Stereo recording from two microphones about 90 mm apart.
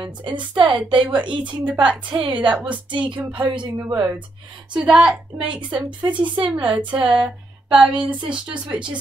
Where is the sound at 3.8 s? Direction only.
25° right (ahead or behind).